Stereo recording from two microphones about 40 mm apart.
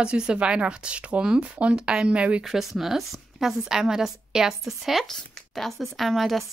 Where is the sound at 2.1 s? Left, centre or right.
Right.